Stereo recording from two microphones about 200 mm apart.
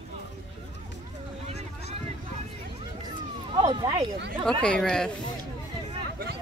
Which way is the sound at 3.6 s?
20° right (ahead or behind).